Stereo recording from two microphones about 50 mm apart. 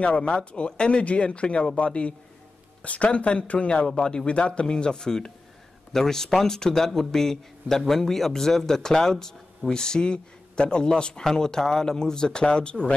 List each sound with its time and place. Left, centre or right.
0.0 s a man's voice: left